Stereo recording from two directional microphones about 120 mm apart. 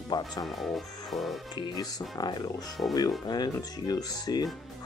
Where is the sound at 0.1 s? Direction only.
35° left (ahead or behind).